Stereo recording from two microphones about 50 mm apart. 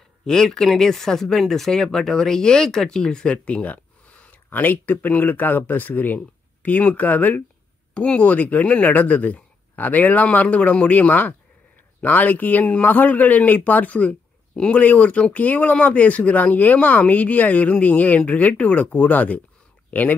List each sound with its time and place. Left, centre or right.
0.2 s speech: centre
3.3 s speech: left
7.9 s speech: left